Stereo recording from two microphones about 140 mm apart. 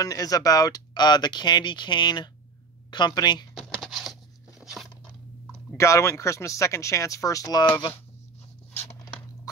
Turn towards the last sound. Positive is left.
turn(degrees=25)  # may be behind; listen again after turning